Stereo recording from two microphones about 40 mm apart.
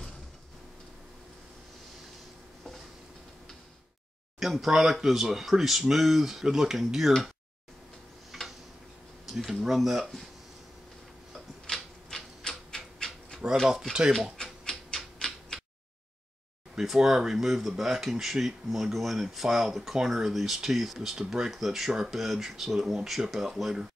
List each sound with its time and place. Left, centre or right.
4.4 s speech: centre
8.3 s tick-tock: centre
9.4 s speech: centre
11.6 s typewriter: centre
12.4 s dog: centre
14.4 s a sound: centre
15.1 s tick-tock: centre
16.7 s speech: centre